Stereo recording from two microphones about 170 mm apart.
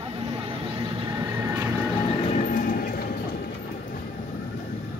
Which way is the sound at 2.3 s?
45° left (ahead or behind).